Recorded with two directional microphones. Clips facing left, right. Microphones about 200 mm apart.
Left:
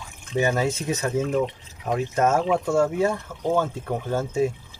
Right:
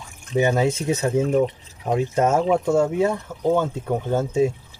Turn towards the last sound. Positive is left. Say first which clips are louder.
# right 3 dB
turn(degrees=-20)  # may be behind; listen again after turning